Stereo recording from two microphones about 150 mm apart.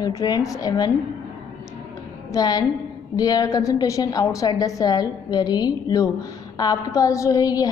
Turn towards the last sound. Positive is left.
turn(degrees=25)  # may be behind; listen again after turning